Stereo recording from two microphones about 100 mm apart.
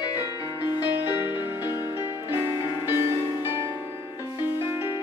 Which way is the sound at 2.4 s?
45° left (ahead or behind).